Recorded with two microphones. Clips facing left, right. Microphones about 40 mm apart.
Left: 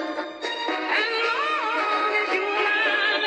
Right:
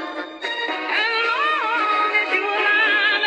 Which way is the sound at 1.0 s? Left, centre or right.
Right.